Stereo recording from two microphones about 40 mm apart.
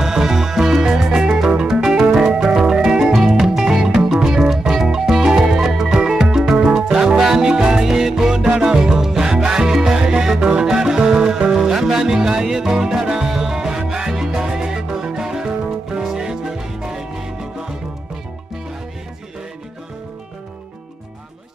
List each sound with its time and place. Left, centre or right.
0.0 s music: centre